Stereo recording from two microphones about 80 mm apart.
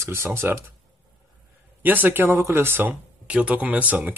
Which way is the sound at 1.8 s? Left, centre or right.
Right.